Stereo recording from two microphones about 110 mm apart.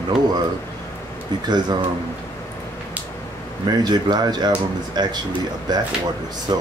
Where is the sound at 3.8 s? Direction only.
40° right (ahead or behind).